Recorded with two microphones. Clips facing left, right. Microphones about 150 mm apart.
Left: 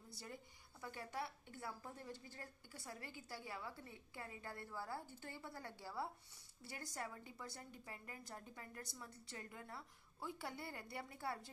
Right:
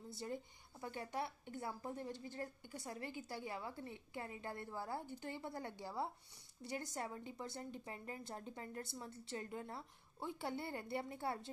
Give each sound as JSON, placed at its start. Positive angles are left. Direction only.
{"t": 0.1, "sound": "a woman's voice", "side_deg": -25}